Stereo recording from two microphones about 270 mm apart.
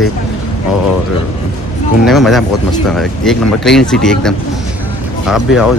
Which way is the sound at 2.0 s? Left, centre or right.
Centre.